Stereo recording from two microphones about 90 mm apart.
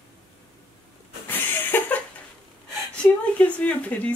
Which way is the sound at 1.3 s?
20° left (ahead or behind).